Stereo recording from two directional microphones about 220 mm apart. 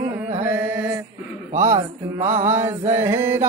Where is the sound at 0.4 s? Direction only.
10° right (ahead or behind).